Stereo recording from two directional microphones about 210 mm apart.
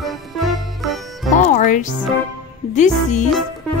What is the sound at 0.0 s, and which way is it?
Music, centre (ahead or behind).